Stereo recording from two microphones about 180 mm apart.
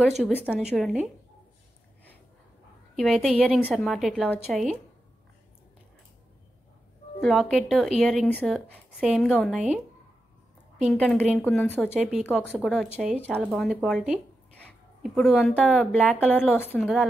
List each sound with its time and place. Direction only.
0.2 s speech: 10° left (ahead or behind)
0.5 s a woman's voice: 5° right (ahead or behind)
3.0 s a woman's voice: centre (ahead or behind)
7.2 s a woman's voice: centre (ahead or behind)
10.8 s a woman's voice: centre (ahead or behind)